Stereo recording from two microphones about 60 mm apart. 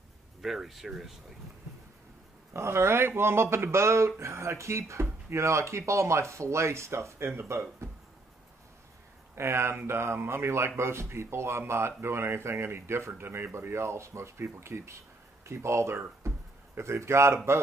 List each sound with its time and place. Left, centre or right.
0.4 s speech: centre
2.5 s speech: right
9.3 s speech: right
16.3 s a sound: right